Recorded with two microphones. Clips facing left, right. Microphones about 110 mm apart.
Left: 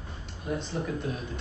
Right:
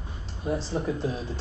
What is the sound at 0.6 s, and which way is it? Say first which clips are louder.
Speech: right 4 dB; 30° right (ahead or behind).